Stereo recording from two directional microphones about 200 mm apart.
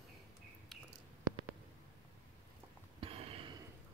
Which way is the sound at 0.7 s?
Centre (ahead or behind).